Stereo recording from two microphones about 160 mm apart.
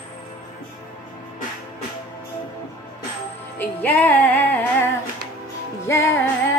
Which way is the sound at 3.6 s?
10° left (ahead or behind).